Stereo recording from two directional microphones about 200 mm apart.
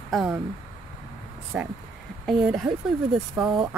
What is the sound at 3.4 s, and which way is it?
Speech, 25° right (ahead or behind).